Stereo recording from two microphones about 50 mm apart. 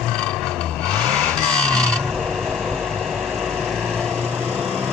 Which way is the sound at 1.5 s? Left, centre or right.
Centre.